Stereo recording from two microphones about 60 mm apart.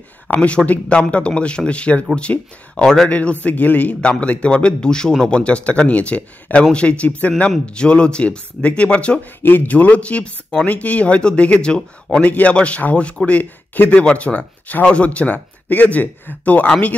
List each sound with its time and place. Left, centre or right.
0.3 s a man's voice: left
3.1 s a man's voice: left
9.4 s a man's voice: left